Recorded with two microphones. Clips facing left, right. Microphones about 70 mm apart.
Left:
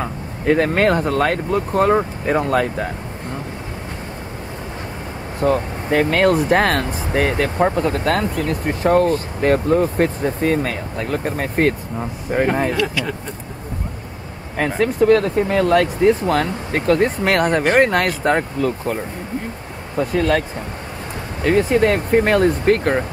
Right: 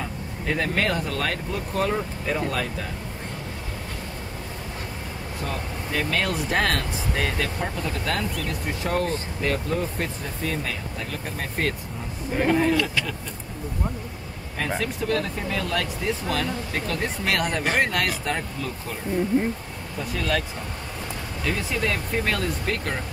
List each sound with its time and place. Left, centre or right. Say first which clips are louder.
0.0 s speech: left 8 dB; left
5.4 s speech: left 14 dB; left
14.8 s speech: left 14 dB; left
20.0 s speech: left 9 dB; left